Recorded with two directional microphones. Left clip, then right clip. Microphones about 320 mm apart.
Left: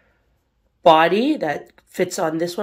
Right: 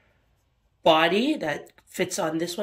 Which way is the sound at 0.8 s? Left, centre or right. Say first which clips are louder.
Left 6 dB; centre.